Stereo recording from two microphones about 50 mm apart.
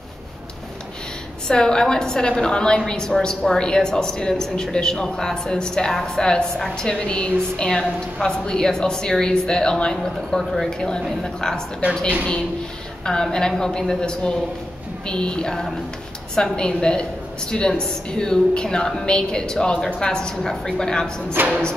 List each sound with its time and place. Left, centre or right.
1.5 s a woman's voice: centre
13.0 s a woman's voice: centre
21.4 s music: right